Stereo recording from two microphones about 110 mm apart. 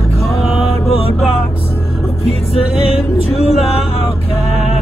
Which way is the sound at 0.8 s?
60° left (ahead or behind).